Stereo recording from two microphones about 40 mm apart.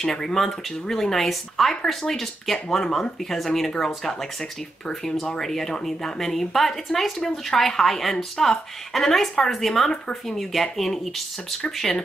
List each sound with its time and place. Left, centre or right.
0.0 s a woman's voice: centre